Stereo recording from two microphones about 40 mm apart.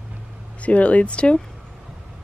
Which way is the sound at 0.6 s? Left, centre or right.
Left.